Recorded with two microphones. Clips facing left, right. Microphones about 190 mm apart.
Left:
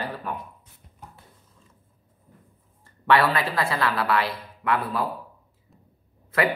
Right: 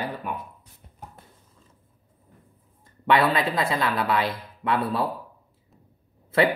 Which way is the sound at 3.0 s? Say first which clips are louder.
Even; 20° right (ahead or behind).